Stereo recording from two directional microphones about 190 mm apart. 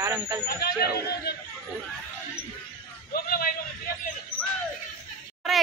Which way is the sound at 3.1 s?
50° left (ahead or behind).